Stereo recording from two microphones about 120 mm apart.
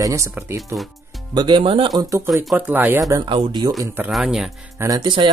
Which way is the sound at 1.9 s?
30° right (ahead or behind).